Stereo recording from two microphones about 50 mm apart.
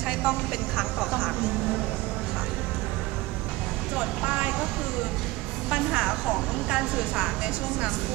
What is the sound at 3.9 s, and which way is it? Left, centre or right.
Speech, right.